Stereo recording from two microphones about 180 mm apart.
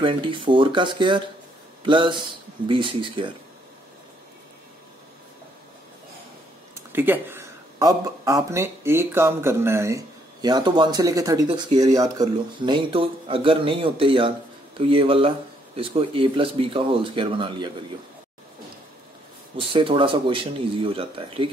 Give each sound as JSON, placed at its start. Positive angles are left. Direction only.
{"t": 0.0, "sound": "speech", "side_deg": -30}
{"t": 6.9, "sound": "speech", "side_deg": -10}
{"t": 19.5, "sound": "speech", "side_deg": -30}